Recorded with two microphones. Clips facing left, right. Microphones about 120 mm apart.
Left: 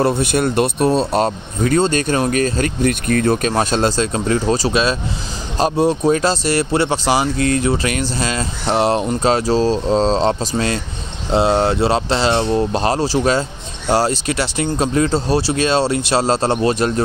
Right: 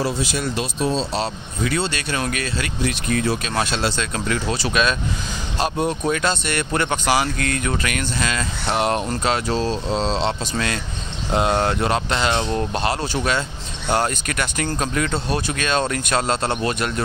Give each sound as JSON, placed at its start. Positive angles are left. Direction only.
{"t": 0.0, "sound": "speech", "side_deg": 55}